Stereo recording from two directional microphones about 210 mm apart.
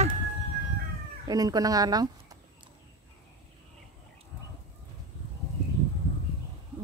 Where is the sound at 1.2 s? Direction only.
20° right (ahead or behind).